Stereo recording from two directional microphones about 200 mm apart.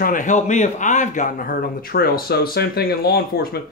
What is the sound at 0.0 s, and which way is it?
A man's voice, 40° left (ahead or behind).